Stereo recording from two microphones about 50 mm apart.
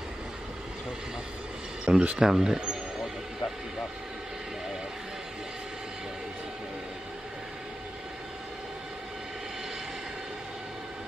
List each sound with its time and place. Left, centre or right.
1.9 s speech: centre
2.3 s speech: centre